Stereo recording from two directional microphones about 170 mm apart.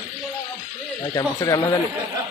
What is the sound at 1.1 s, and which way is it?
Speech, 20° left (ahead or behind).